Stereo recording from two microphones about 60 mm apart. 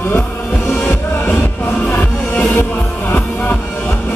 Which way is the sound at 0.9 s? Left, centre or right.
Left.